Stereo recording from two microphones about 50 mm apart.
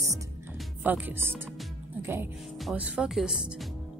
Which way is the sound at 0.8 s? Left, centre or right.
Right.